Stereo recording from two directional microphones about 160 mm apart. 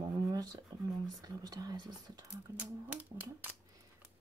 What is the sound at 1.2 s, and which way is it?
Speech, 25° right (ahead or behind).